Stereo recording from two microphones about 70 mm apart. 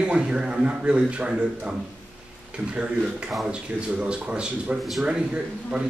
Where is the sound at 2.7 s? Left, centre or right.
Centre.